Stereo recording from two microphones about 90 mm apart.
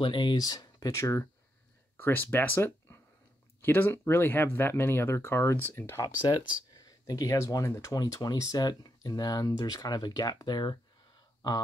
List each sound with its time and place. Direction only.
0.0 s speech: 60° left (ahead or behind); by 1.2 s 35° left (ahead or behind)
2.0 s speech: 20° left (ahead or behind)
6.9 s speech: 45° left (ahead or behind)